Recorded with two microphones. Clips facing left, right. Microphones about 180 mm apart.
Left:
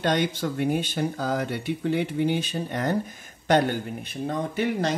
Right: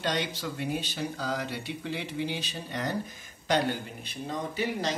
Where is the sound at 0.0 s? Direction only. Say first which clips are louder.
Left 7 dB; 50° left (ahead or behind).